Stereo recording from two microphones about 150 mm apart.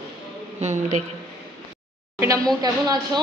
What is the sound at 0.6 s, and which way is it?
Speech, 50° right (ahead or behind).